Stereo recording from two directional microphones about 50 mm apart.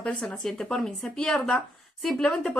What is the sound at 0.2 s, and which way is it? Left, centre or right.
Speech, centre.